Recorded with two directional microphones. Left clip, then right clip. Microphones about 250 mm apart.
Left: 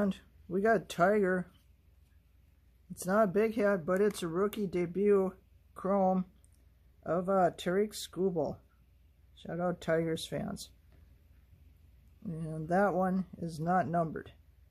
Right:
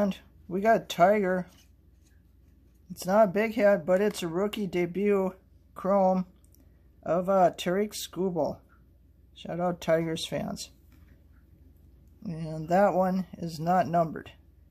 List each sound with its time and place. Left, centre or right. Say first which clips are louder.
0.0 s speech: right 5 dB; centre
2.9 s speech: right 6 dB; centre
12.2 s speech: right 4 dB; centre